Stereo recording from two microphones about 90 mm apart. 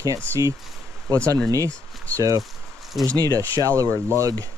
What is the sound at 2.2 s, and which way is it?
Speech, 40° right (ahead or behind).